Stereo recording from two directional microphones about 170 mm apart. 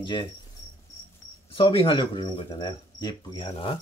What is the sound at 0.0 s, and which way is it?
Cricket, 30° left (ahead or behind).